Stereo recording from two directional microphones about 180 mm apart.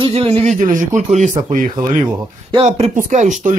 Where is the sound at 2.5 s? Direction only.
35° right (ahead or behind).